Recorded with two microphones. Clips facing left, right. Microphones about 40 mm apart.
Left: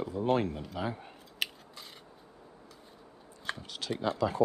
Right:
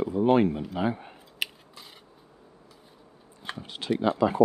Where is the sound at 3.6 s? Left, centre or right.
Right.